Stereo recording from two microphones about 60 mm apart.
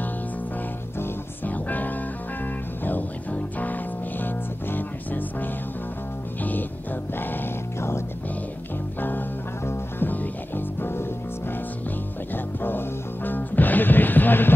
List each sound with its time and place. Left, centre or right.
0.9 s music: left
1.5 s music: left
7.2 s music: left
9.7 s music: left
12.5 s music: left